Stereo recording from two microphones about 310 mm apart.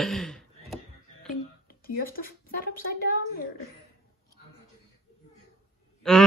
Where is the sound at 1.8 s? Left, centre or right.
Left.